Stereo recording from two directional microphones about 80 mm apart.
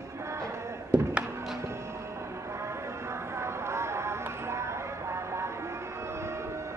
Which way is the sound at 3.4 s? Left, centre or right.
Right.